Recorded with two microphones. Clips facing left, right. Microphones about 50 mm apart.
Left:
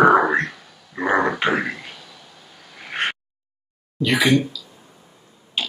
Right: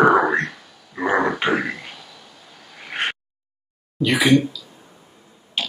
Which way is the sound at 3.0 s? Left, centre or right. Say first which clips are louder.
Left 1 dB; centre.